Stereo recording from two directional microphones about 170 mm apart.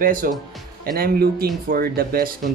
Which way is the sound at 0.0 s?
55° right (ahead or behind).